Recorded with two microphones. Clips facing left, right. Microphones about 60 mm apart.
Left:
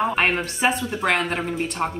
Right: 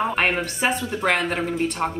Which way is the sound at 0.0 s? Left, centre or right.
Centre.